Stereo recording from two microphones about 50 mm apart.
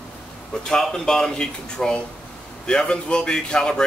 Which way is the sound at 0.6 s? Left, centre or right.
Centre.